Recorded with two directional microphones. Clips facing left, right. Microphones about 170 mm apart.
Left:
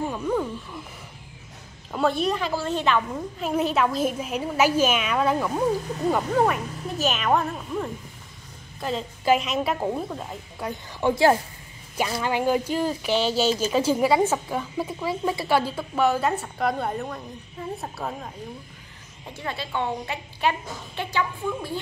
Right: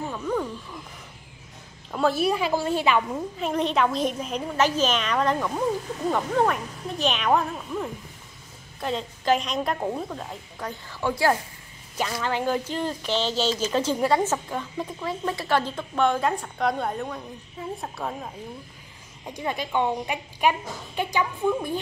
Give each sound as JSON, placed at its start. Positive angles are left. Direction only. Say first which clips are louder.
{"t": 0.1, "sound": "wild animals", "louder": "left 2 dB", "side_deg": 10}
{"t": 1.9, "sound": "a woman's voice", "louder": "even", "side_deg": 0}
{"t": 3.4, "sound": "a woman's voice", "louder": "left 1 dB", "side_deg": 5}
{"t": 10.9, "sound": "a woman's voice", "louder": "left 4 dB", "side_deg": 20}
{"t": 19.3, "sound": "a woman's voice", "louder": "right 4 dB", "side_deg": -15}